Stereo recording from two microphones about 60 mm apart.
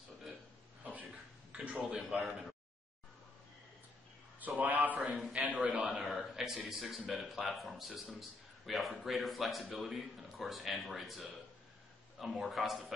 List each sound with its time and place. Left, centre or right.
0.8 s a sound: right
2.0 s a man's voice: centre
4.4 s a man's voice: right
5.9 s a man's voice: centre